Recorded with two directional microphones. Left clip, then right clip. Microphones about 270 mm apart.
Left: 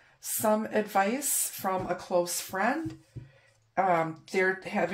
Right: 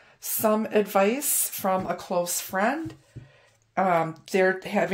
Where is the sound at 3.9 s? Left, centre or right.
Right.